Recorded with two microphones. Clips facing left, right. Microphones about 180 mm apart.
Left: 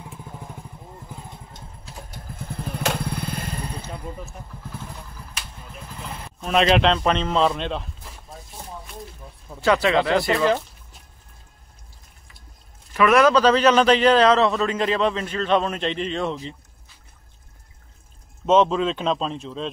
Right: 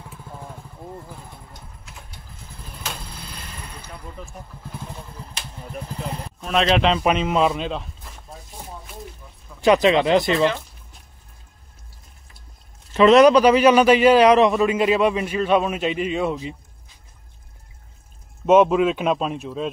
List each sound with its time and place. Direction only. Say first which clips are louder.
0.3 s vehicle: right 1 dB; 20° left (ahead or behind)
2.3 s vehicle: left 11 dB; 60° left (ahead or behind); by 3.8 s 40° left (ahead or behind)
6.4 s a man's voice: left 1 dB; centre (ahead or behind)
9.6 s speech: right 3 dB; 20° right (ahead or behind)
12.9 s a man's voice: right 4 dB; 25° right (ahead or behind)
18.4 s a man's voice: right 3 dB; 10° right (ahead or behind)